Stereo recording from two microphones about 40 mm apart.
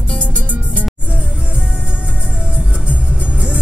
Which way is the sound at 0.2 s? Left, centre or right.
Right.